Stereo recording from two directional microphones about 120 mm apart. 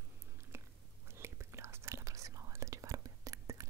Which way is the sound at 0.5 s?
20° right (ahead or behind).